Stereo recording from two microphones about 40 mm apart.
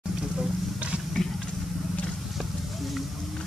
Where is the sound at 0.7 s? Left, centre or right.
Right.